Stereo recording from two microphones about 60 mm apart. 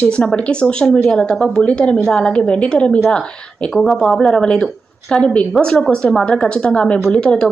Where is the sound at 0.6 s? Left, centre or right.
Centre.